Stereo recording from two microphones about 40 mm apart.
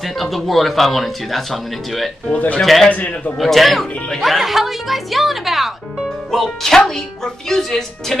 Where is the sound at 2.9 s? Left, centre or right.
Left.